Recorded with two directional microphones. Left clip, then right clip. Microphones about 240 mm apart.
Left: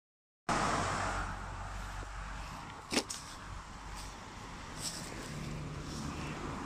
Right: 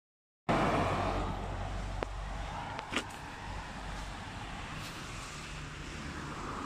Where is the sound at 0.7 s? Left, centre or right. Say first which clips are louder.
Right 2 dB; centre.